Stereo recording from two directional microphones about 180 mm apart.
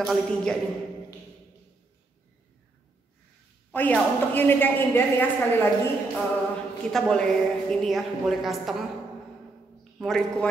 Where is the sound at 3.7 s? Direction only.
10° left (ahead or behind).